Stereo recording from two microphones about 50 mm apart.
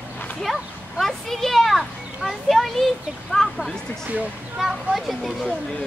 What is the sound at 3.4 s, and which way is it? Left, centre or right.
Speech, centre.